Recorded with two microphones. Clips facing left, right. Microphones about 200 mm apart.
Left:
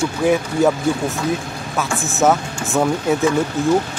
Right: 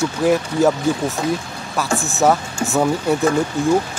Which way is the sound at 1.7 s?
Centre (ahead or behind).